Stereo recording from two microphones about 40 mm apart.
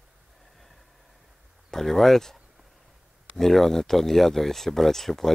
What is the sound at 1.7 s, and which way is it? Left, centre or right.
Speech, centre.